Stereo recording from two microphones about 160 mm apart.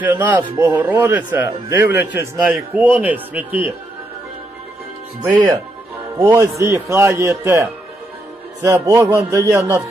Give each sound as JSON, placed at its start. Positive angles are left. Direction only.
{"t": 0.0, "sound": "speech", "side_deg": -10}
{"t": 2.3, "sound": "a man's voice", "side_deg": 0}
{"t": 2.8, "sound": "speech", "side_deg": -10}
{"t": 5.2, "sound": "a man's voice", "side_deg": -20}